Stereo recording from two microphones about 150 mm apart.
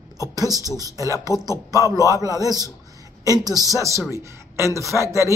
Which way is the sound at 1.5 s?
20° left (ahead or behind).